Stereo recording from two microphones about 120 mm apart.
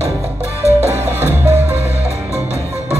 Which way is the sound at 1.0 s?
20° right (ahead or behind).